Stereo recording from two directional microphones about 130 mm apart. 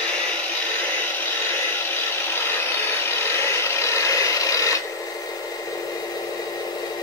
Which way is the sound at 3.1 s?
20° left (ahead or behind).